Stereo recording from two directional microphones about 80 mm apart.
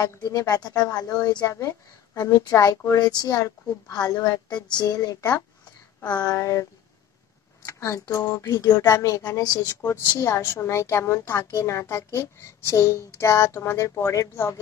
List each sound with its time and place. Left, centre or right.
0.0 s speech: left
3.0 s speech: left
3.4 s a woman's voice: left
4.5 s a sound: left
6.0 s speech: left
6.3 s a woman's voice: left